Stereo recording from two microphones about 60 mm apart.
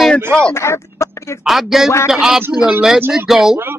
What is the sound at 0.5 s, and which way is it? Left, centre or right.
Speech, left.